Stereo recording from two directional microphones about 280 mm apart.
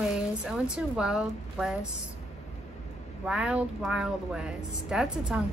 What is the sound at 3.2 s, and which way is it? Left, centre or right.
A woman's voice, centre.